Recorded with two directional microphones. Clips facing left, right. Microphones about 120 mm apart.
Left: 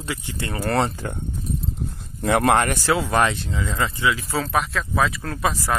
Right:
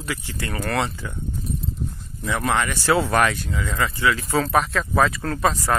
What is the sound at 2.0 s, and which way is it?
Speech, 60° left (ahead or behind).